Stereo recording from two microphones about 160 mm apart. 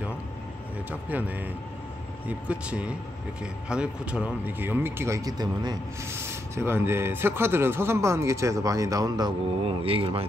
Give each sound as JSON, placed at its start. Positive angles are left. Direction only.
{"t": 0.8, "sound": "speech", "side_deg": -10}
{"t": 9.8, "sound": "speech", "side_deg": -35}